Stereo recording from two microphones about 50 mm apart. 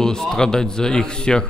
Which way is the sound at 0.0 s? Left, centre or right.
Centre.